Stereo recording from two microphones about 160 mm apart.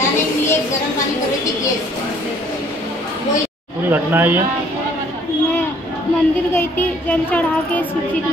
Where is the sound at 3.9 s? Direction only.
10° right (ahead or behind).